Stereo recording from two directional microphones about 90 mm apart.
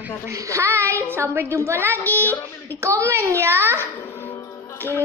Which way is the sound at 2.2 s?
20° left (ahead or behind).